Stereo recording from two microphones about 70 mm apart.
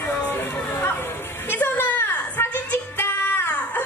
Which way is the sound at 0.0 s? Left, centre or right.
Left.